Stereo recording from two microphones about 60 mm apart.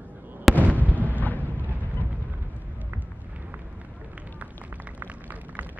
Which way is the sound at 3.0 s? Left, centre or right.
Right.